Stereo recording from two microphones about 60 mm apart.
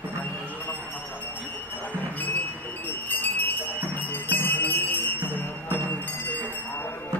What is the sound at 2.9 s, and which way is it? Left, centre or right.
Jingle bell, left.